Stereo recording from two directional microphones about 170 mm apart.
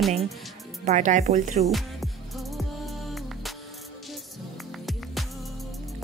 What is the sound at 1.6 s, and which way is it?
Music, centre (ahead or behind).